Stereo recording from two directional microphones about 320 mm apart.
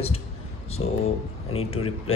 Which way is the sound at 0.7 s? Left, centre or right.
Centre.